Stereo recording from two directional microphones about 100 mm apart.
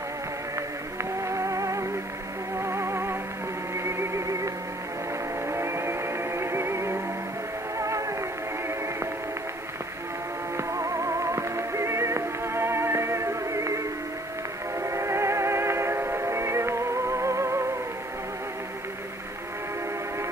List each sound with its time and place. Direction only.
1.2 s music: 30° right (ahead or behind)
5.5 s music: 25° right (ahead or behind)
10.7 s music: 30° right (ahead or behind)
14.8 s music: 30° right (ahead or behind)